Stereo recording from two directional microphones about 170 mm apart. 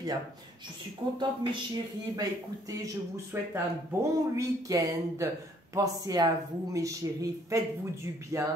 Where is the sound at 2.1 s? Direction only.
20° right (ahead or behind).